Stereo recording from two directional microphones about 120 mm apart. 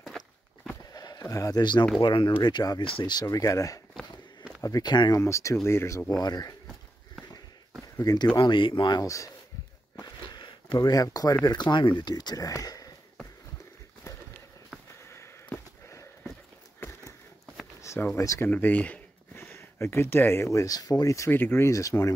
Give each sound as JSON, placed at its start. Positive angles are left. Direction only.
{"t": 0.9, "sound": "a sound", "side_deg": 35}
{"t": 1.2, "sound": "speech", "side_deg": 25}
{"t": 1.6, "sound": "speech", "side_deg": 40}
{"t": 2.8, "sound": "speech", "side_deg": 45}
{"t": 5.2, "sound": "speech", "side_deg": 25}
{"t": 8.0, "sound": "speech", "side_deg": 35}
{"t": 9.9, "sound": "a sound", "side_deg": 35}
{"t": 11.4, "sound": "speech", "side_deg": 35}
{"t": 14.0, "sound": "run", "side_deg": 25}
{"t": 15.0, "sound": "sniff", "side_deg": 20}
{"t": 17.8, "sound": "speech", "side_deg": 20}
{"t": 18.5, "sound": "speech", "side_deg": 15}